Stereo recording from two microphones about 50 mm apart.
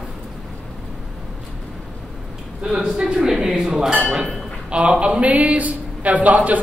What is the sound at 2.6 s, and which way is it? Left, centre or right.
A man's voice, centre.